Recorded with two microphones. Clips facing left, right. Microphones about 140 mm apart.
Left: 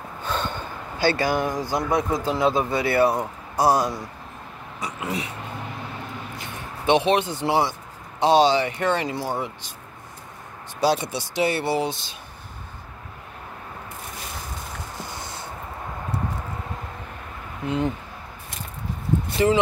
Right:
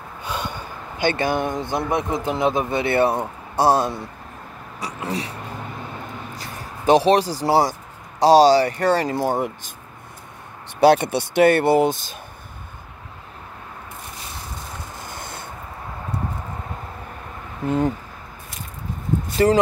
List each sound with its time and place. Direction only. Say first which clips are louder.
0.2 s speech: left 1 dB; 10° right (ahead or behind); by 5.3 s 35° right (ahead or behind)
6.3 s speech: right 1 dB; 40° right (ahead or behind)
10.8 s speech: right 7 dB; 60° right (ahead or behind)
15.0 s a sound: right 1 dB; 55° right (ahead or behind)
17.6 s speech: right 4 dB; 45° right (ahead or behind)
19.3 s speech: right 3 dB; 40° right (ahead or behind)